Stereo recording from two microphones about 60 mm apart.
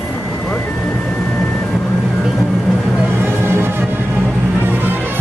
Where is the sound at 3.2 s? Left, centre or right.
Right.